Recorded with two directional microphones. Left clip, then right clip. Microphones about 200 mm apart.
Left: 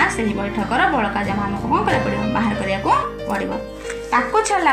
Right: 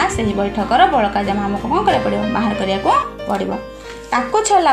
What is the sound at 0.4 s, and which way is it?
Speech, 35° right (ahead or behind).